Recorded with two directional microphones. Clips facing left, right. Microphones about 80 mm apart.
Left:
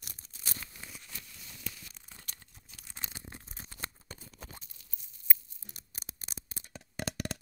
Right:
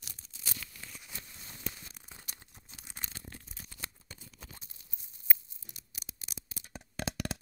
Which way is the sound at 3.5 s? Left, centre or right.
Left.